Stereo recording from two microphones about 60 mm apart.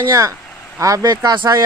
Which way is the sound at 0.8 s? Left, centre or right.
Right.